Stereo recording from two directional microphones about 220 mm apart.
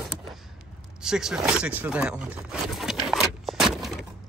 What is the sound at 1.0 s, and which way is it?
Speech, 5° right (ahead or behind).